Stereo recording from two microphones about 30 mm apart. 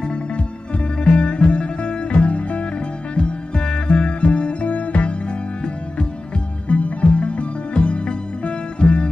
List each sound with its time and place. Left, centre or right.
1.0 s music: left
2.2 s music: left
3.2 s music: left
6.7 s music: left